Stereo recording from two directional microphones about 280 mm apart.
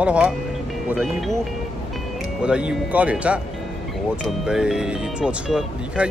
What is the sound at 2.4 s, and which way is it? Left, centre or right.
Speech, centre.